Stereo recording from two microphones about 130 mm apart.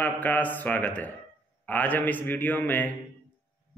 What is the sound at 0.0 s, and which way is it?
A man's voice, 15° left (ahead or behind).